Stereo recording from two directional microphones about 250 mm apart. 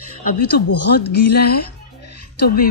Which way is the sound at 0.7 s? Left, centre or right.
Left.